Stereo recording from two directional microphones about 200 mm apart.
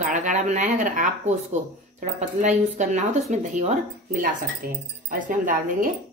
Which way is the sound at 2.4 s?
35° right (ahead or behind).